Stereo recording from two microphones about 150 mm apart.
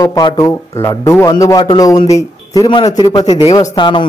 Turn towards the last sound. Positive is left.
turn(degrees=30)  # may be behind; listen again after turning